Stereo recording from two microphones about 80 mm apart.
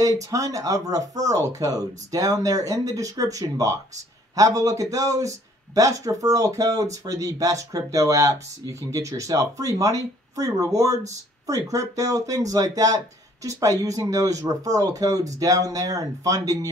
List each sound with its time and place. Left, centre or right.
0.2 s speech: right